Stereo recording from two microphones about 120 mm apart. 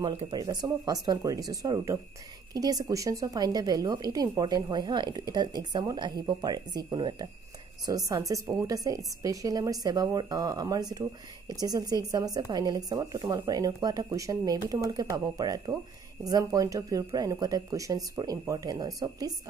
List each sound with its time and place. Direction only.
0.0 s a woman's voice: 40° right (ahead or behind)